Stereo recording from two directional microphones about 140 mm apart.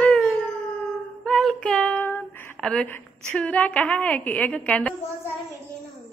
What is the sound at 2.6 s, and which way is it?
A woman's voice, 5° left (ahead or behind).